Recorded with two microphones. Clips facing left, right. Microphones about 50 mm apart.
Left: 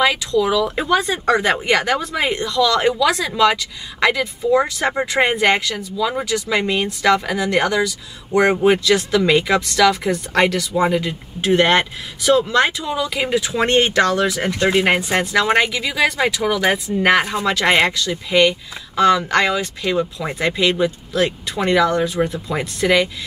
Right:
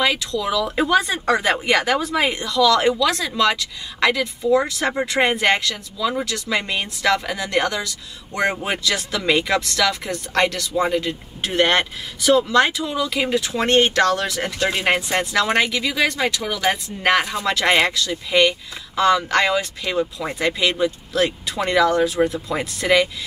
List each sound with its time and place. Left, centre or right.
0.0 s speech: centre
14.5 s speech: centre
17.2 s speech: centre
17.5 s speech: centre